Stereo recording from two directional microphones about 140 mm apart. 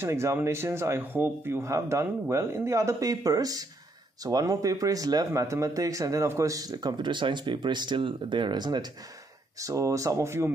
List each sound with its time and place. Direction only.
0.0 s speech: 20° right (ahead or behind)